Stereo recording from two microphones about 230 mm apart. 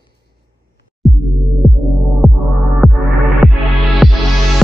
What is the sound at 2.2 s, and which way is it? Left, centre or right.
Music, centre.